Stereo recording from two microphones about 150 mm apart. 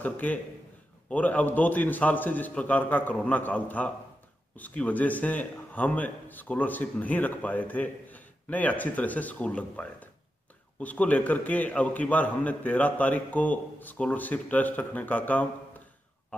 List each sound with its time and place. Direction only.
0.0 s a man's voice: 10° left (ahead or behind)